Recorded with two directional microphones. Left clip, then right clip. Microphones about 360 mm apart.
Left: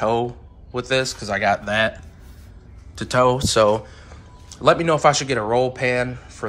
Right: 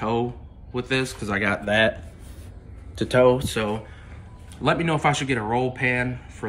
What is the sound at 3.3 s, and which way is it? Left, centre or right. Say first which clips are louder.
Speech: left 6 dB; centre.